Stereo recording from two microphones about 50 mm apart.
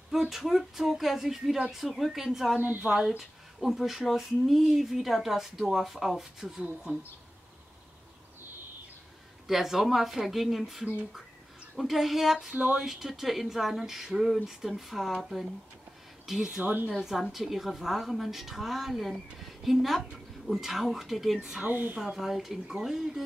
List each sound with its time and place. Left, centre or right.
0.1 s speech: centre
9.5 s speech: centre
12.5 s speech: right
12.8 s speech: centre
16.3 s speech: centre
16.6 s speech: right
17.0 s speech: centre
21.6 s speech: right
22.0 s speech: centre